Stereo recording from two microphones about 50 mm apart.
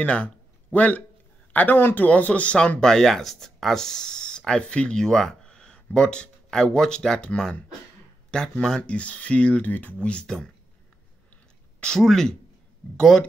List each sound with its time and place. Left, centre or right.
0.0 s speech: left
2.8 s speech: centre
5.5 s speech: centre
12.0 s speech: centre